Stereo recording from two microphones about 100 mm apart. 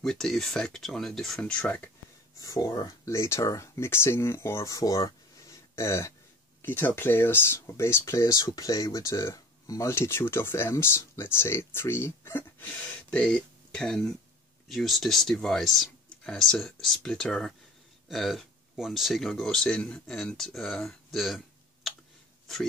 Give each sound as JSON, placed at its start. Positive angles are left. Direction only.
{"t": 0.0, "sound": "speech", "side_deg": 5}
{"t": 2.3, "sound": "speech", "side_deg": 40}
{"t": 13.1, "sound": "speech", "side_deg": 10}